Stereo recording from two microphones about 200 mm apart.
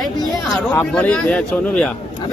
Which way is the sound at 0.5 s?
5° left (ahead or behind).